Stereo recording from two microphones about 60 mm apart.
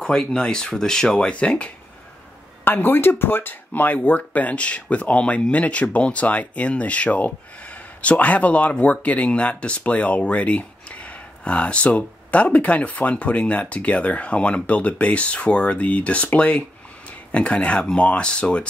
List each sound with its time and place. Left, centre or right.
0.0 s speech: centre
2.6 s speech: left; by 18.7 s centre